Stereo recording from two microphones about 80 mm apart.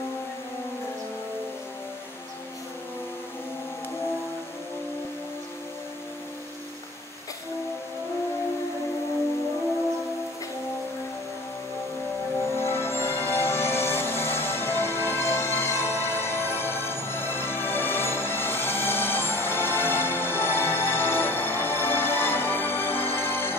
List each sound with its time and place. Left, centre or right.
12.4 s music: left